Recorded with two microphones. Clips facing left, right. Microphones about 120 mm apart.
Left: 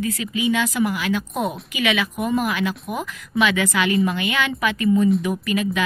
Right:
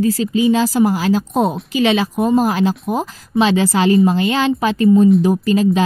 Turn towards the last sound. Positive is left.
turn(degrees=-30)  # may be behind; listen again after turning